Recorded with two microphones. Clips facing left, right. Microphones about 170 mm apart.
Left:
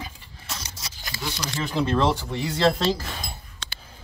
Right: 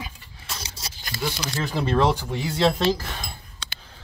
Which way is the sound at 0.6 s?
30° right (ahead or behind).